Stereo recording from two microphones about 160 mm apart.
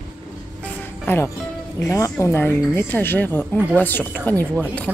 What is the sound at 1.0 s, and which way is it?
Speech, 15° left (ahead or behind).